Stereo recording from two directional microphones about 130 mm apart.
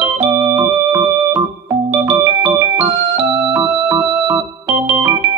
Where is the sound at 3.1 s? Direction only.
20° right (ahead or behind).